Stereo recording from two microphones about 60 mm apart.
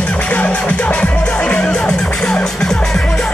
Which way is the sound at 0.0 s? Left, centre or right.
Left.